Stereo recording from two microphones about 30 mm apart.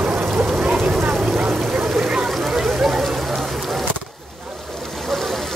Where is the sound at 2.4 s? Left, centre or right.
Right.